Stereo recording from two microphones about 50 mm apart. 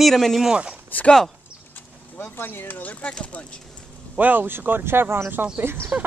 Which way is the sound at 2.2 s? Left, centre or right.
Left.